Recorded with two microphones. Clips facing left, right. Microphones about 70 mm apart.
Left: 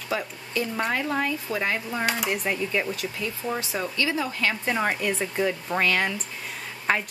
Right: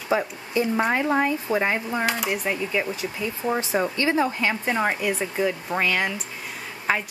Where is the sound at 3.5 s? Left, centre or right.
Right.